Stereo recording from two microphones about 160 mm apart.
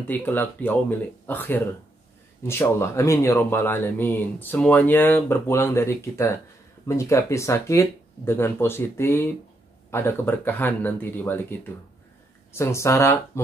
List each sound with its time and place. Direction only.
0.0 s speech: 10° left (ahead or behind)
12.5 s speech: 20° left (ahead or behind)